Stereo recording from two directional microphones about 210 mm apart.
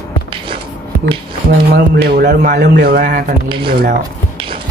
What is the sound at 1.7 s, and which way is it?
Speech, 50° right (ahead or behind).